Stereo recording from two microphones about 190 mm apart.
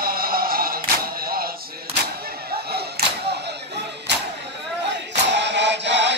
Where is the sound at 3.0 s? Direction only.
55° right (ahead or behind).